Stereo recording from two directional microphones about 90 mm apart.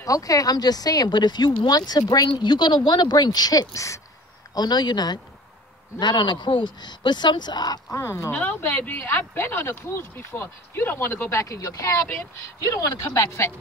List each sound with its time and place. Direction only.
0.0 s speech: 40° left (ahead or behind)
4.6 s speech: 50° left (ahead or behind)
7.9 s speech: 30° left (ahead or behind)
8.3 s speech: 15° left (ahead or behind); by 13.5 s 35° left (ahead or behind)